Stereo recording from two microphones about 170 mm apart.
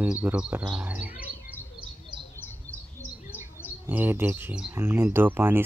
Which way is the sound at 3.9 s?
10° right (ahead or behind).